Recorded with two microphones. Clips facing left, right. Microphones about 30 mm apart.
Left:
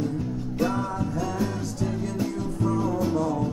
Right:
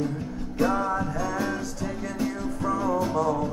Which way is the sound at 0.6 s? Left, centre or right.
Centre.